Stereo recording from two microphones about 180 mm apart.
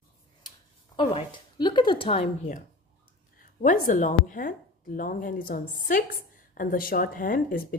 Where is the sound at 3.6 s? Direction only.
50° left (ahead or behind).